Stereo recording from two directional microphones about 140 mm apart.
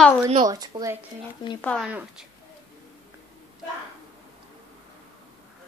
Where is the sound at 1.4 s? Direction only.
30° left (ahead or behind).